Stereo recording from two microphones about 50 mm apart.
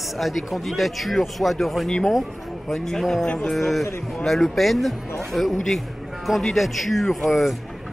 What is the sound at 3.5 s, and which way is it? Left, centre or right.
Speech, centre.